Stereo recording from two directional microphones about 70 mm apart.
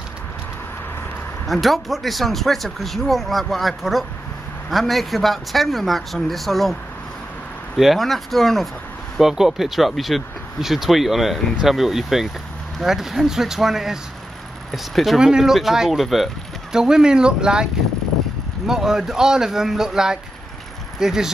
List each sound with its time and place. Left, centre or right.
1.5 s a man's voice: centre
18.7 s a man's voice: centre